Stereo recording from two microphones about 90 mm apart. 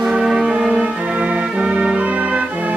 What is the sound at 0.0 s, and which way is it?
Music, 5° right (ahead or behind).